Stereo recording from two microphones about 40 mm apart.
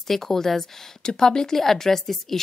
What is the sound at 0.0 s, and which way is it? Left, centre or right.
A woman's voice, centre.